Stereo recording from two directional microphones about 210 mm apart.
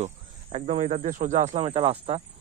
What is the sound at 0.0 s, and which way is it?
Speech, 35° right (ahead or behind).